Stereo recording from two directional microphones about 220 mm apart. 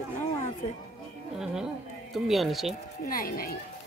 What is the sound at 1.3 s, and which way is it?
Speech, 5° right (ahead or behind).